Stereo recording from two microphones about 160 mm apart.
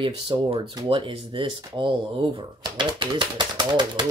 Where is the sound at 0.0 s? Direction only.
30° right (ahead or behind).